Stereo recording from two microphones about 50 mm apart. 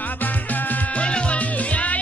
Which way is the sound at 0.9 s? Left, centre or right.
Left.